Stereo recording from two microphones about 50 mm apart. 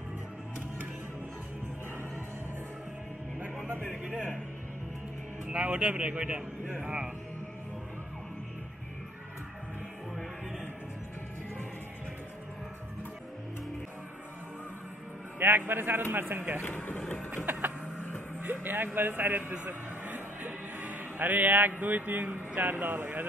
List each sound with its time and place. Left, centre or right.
5.5 s speech: right
15.3 s speech: right
16.6 s speech: left
17.3 s a sound: right
18.4 s music: right
18.9 s speech: right